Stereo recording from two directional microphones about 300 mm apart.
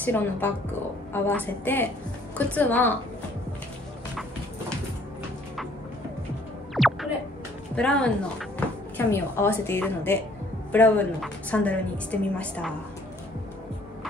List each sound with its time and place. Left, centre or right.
0.0 s a woman's voice: centre
6.7 s music: centre
7.7 s a woman's voice: centre